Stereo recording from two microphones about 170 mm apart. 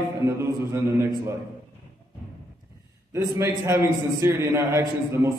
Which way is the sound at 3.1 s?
15° right (ahead or behind).